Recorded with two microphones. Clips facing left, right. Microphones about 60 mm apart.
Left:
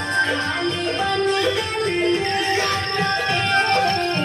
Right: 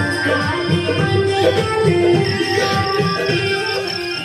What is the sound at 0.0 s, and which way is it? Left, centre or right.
Music, right.